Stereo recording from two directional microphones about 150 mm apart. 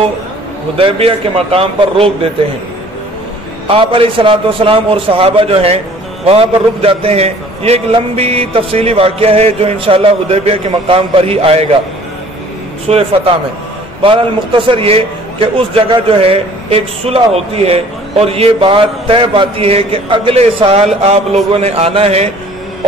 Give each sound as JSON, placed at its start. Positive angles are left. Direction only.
{"t": 0.7, "sound": "a man's voice", "side_deg": -40}
{"t": 3.6, "sound": "a man's voice", "side_deg": -40}
{"t": 12.8, "sound": "a man's voice", "side_deg": -40}